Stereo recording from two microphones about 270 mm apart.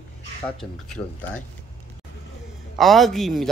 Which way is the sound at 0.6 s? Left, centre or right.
Centre.